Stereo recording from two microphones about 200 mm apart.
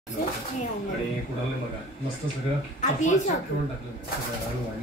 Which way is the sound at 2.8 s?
35° left (ahead or behind).